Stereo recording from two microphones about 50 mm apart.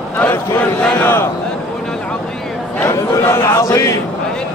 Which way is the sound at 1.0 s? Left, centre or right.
Left.